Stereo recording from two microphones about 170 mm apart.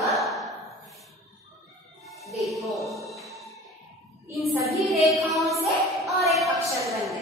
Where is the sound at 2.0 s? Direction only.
Centre (ahead or behind).